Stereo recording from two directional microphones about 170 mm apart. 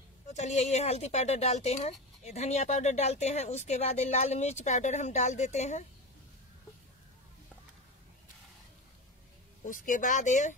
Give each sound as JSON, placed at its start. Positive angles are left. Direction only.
{"t": 0.3, "sound": "speech", "side_deg": 40}
{"t": 9.7, "sound": "speech", "side_deg": 50}